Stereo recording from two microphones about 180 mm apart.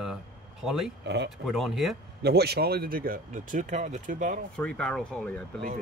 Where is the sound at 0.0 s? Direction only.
Centre (ahead or behind).